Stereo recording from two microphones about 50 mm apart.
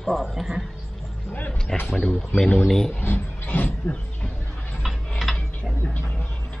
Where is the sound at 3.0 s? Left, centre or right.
Left.